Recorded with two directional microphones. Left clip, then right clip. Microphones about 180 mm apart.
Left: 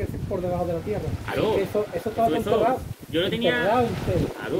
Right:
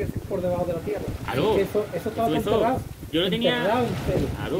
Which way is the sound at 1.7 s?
20° left (ahead or behind).